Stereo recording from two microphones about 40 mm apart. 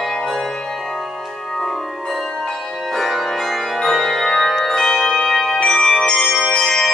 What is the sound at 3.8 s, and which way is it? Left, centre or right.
Music, centre.